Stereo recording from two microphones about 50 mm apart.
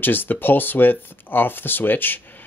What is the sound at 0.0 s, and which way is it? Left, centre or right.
Speech, left.